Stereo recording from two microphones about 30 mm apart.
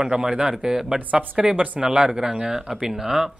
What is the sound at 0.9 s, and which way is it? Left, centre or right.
Speech, right.